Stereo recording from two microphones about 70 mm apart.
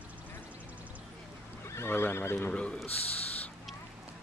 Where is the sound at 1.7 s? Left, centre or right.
Left.